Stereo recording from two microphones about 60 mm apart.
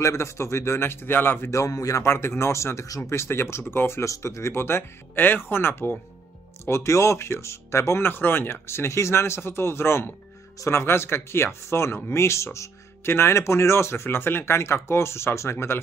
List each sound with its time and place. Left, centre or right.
0.0 s speech: left
1.5 s speech: left
2.0 s speech: left
4.0 s speech: left
6.6 s speech: left